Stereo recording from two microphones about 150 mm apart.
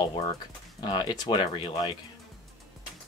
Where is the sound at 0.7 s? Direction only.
30° left (ahead or behind).